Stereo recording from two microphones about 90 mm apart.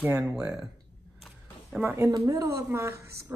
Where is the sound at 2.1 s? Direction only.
45° right (ahead or behind).